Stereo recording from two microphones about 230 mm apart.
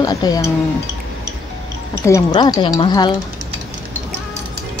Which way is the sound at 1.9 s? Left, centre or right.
Centre.